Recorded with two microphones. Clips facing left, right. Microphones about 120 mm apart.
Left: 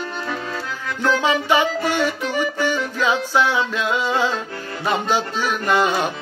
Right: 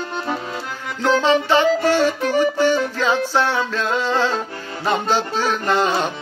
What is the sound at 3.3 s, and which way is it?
Music, 10° left (ahead or behind).